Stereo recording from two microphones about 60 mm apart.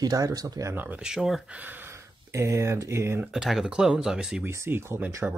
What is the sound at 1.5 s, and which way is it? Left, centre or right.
Speech, right.